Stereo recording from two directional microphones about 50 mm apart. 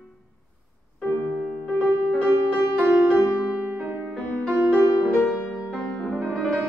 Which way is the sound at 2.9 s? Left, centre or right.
Right.